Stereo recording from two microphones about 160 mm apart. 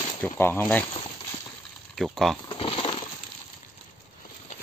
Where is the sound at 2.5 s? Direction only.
35° left (ahead or behind).